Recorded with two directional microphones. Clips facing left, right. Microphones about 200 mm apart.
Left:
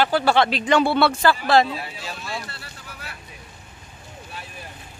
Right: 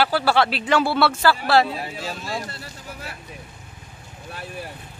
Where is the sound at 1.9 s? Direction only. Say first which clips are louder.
Right 3 dB; 40° right (ahead or behind).